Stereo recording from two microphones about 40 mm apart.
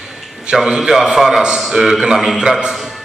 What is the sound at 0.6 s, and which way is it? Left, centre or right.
A man's voice, centre.